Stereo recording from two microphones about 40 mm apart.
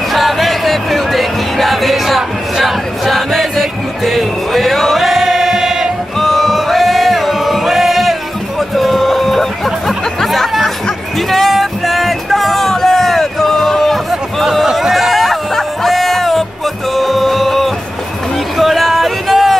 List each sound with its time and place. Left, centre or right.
0.1 s music: centre
6.1 s choir: centre
11.1 s music: centre
14.7 s music: centre
18.6 s a sound: centre